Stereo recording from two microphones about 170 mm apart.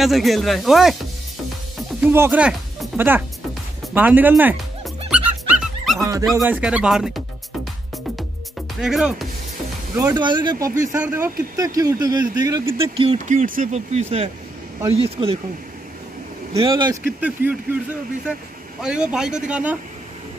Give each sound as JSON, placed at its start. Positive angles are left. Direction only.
{"t": 0.0, "sound": "speech", "side_deg": 0}
{"t": 1.8, "sound": "music", "side_deg": -10}
{"t": 3.9, "sound": "speech", "side_deg": -10}
{"t": 5.1, "sound": "dog", "side_deg": -5}
{"t": 5.9, "sound": "dog", "side_deg": -20}
{"t": 6.3, "sound": "speech", "side_deg": -10}
{"t": 8.8, "sound": "speech", "side_deg": -5}
{"t": 9.9, "sound": "speech", "side_deg": -25}
{"t": 10.9, "sound": "speech", "side_deg": -10}
{"t": 12.7, "sound": "speech", "side_deg": -35}
{"t": 13.3, "sound": "speech", "side_deg": -45}
{"t": 16.5, "sound": "speech", "side_deg": -30}
{"t": 17.0, "sound": "speech", "side_deg": -10}
{"t": 18.8, "sound": "speech", "side_deg": -5}